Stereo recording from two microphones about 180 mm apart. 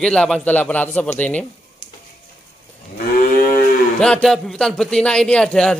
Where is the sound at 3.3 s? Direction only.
45° left (ahead or behind).